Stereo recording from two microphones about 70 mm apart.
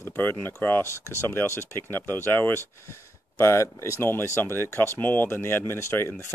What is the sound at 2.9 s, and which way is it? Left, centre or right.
Speech, left.